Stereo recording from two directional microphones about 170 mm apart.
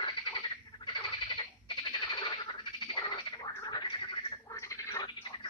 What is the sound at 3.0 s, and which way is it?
Frog, 25° left (ahead or behind).